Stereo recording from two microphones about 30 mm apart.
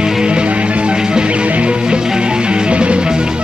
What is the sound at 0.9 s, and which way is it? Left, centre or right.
Music, right.